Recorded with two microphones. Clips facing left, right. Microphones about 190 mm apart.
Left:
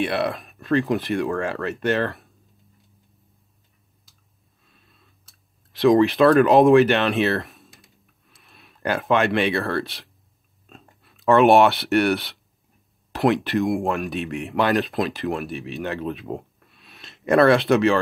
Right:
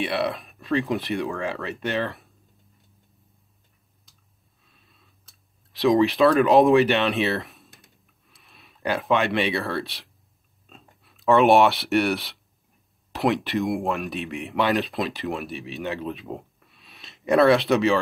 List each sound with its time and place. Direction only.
0.0 s speech: centre (ahead or behind)
4.6 s clicking: centre (ahead or behind)
10.7 s speech: centre (ahead or behind)